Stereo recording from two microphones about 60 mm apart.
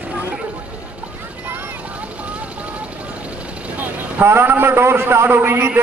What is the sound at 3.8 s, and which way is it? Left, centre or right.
Vehicle, right.